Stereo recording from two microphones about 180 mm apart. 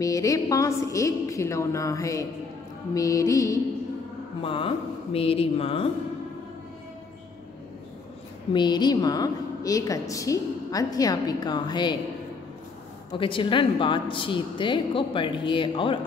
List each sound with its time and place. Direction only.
0.0 s a woman's voice: 20° left (ahead or behind)
4.4 s speech: 30° left (ahead or behind)
8.5 s a woman's voice: 25° left (ahead or behind)
13.2 s a woman's voice: 30° left (ahead or behind)